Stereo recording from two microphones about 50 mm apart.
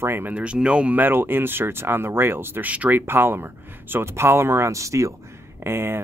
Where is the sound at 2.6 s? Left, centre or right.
Right.